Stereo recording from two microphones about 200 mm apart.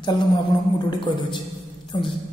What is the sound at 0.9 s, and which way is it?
Speech, 25° left (ahead or behind).